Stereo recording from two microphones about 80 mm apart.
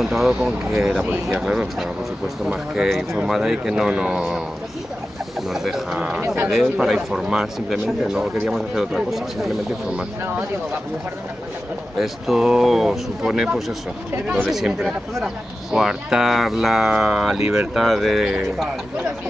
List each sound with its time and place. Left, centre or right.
0.0 s a man's voice: centre
1.8 s a man's voice: centre
5.5 s a man's voice: centre
12.0 s speech: centre